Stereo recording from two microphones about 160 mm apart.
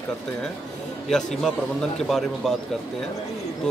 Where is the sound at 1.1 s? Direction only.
5° left (ahead or behind).